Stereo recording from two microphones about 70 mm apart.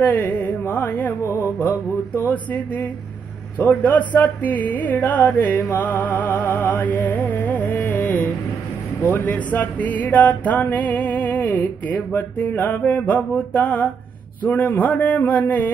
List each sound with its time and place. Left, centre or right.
0.0 s music: left
1.2 s music: left
2.3 s music: left